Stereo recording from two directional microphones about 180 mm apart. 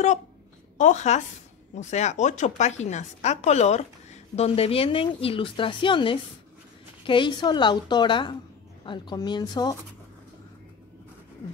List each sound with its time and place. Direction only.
0.7 s a woman's voice: 40° left (ahead or behind); by 9.8 s 20° left (ahead or behind)